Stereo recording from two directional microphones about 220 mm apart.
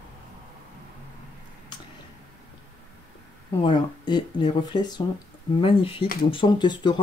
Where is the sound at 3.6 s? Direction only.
20° left (ahead or behind).